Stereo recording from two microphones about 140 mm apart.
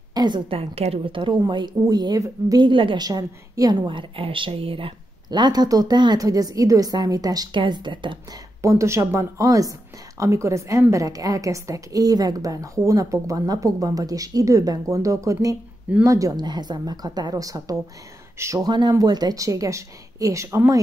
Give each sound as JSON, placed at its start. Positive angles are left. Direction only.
{"t": 0.1, "sound": "a woman's voice", "side_deg": -30}
{"t": 8.6, "sound": "a woman's voice", "side_deg": -20}
{"t": 18.7, "sound": "a woman's voice", "side_deg": -30}